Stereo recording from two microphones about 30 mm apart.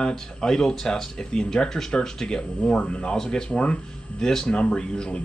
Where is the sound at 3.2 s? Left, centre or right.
Left.